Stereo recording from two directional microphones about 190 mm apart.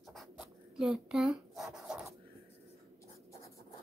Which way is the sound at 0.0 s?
Centre (ahead or behind).